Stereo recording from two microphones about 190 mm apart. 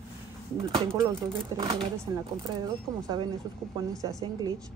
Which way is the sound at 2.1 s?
20° right (ahead or behind).